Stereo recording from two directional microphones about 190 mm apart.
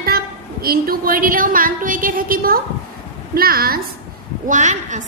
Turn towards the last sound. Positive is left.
turn(degrees=-40)  # may be behind; listen again after turning